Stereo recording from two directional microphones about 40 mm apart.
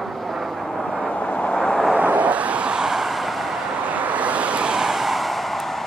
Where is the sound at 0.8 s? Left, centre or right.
Left.